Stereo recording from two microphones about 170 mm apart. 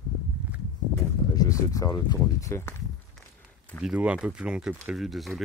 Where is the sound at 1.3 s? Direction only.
20° left (ahead or behind).